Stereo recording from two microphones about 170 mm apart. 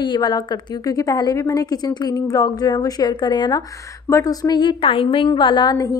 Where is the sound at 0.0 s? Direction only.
25° left (ahead or behind).